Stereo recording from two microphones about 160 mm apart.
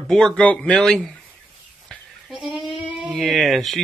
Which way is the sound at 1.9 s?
5° right (ahead or behind).